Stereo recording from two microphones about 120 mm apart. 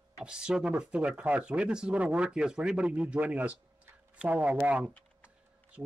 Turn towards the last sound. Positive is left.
turn(degrees=-10)  # may be behind; listen again after turning